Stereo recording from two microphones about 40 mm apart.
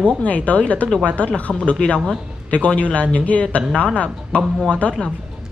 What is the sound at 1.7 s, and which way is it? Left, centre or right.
Speech, left.